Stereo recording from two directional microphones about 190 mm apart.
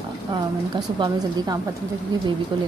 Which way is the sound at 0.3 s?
25° right (ahead or behind).